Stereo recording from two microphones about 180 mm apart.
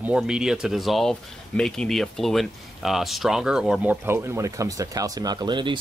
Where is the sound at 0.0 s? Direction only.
5° right (ahead or behind).